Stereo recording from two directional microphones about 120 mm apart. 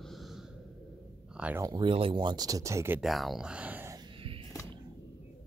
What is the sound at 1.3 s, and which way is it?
Speech, 10° right (ahead or behind).